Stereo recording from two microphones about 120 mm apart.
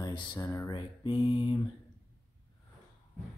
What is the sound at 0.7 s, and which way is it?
Speech, 40° left (ahead or behind).